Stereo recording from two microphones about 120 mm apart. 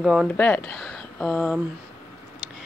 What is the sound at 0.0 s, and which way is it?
Speech, 5° right (ahead or behind).